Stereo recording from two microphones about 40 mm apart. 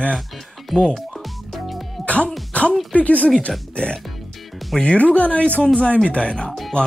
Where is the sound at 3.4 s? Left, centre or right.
Left.